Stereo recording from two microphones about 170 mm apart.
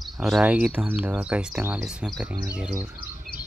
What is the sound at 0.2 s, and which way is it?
Speech, 5° right (ahead or behind).